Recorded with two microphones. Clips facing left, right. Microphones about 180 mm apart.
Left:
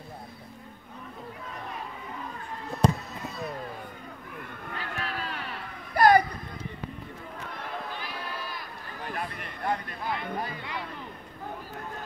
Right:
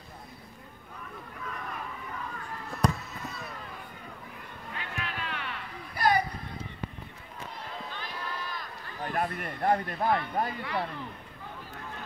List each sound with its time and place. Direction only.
2.8 s basketball bounce: 25° left (ahead or behind)
4.7 s music: 40° left (ahead or behind)
9.0 s a sound: 45° right (ahead or behind)